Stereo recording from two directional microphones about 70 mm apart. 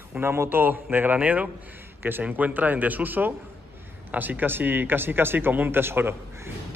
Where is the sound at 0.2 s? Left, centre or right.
Right.